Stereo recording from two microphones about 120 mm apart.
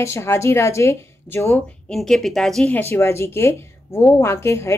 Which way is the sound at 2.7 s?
20° left (ahead or behind).